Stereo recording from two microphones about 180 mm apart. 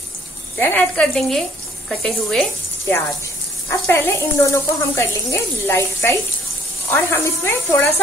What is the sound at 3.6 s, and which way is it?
Speech, 10° left (ahead or behind).